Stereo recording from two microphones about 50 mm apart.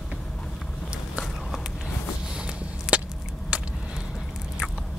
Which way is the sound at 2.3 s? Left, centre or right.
Centre.